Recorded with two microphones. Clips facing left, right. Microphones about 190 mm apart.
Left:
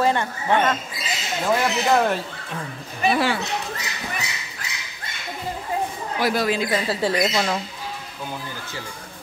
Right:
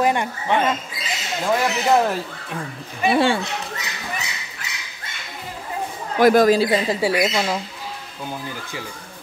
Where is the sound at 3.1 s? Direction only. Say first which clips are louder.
Right 5 dB; 25° right (ahead or behind).